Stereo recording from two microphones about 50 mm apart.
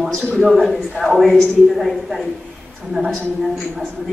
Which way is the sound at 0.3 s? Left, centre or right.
Centre.